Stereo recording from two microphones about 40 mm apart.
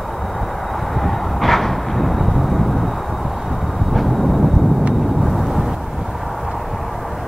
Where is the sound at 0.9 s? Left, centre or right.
Centre.